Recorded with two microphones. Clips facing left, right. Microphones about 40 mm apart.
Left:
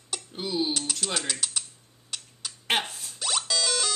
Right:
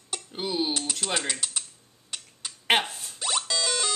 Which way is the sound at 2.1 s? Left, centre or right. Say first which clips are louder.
Even; centre.